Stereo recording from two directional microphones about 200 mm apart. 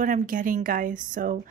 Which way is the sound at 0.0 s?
40° right (ahead or behind).